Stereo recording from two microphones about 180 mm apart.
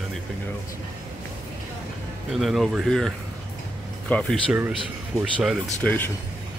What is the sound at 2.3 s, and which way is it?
Speech, centre (ahead or behind).